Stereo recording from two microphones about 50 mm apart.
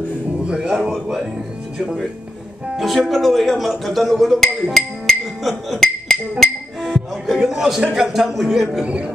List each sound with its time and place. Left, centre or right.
0.4 s speech: centre
2.8 s speech: centre
6.8 s music: centre
7.4 s speech: centre
8.8 s a man's voice: right